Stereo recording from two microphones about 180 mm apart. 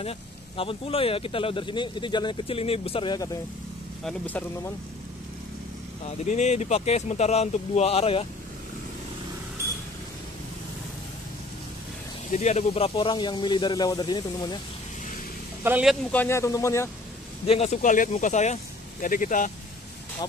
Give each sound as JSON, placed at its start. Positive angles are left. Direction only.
{"t": 0.0, "sound": "speech", "side_deg": 30}
{"t": 4.0, "sound": "speech", "side_deg": 10}
{"t": 6.0, "sound": "speech", "side_deg": 40}
{"t": 12.3, "sound": "speech", "side_deg": 40}
{"t": 15.6, "sound": "a man's voice", "side_deg": -5}
{"t": 16.1, "sound": "speech", "side_deg": 10}
{"t": 17.5, "sound": "speech", "side_deg": 35}